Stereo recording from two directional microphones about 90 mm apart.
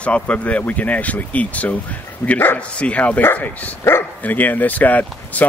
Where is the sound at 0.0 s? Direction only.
15° left (ahead or behind).